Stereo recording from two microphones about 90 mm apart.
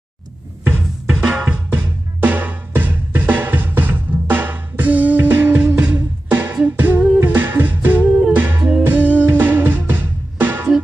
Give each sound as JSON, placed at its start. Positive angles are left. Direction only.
{"t": 0.7, "sound": "music", "side_deg": -20}
{"t": 1.1, "sound": "music", "side_deg": -10}